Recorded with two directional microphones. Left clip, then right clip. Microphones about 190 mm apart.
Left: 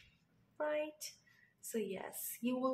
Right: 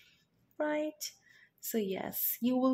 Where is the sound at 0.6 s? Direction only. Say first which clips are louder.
Right 5 dB; 30° right (ahead or behind).